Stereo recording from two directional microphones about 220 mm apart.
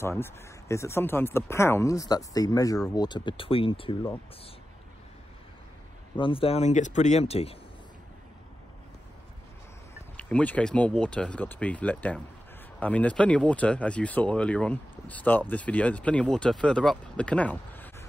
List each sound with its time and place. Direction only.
0.0 s speech: 10° left (ahead or behind)
6.1 s speech: 25° left (ahead or behind)
10.1 s speech: 5° left (ahead or behind)